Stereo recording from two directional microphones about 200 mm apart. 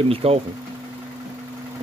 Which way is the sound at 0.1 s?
30° right (ahead or behind).